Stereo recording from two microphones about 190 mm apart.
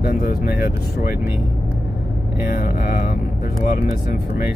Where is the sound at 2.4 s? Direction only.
45° left (ahead or behind).